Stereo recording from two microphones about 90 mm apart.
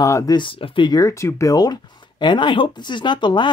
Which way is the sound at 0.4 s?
75° left (ahead or behind).